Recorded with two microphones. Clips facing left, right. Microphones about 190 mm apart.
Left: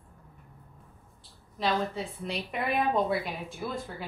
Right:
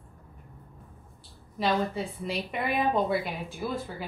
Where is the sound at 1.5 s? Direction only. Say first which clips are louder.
Right 2 dB; 5° right (ahead or behind).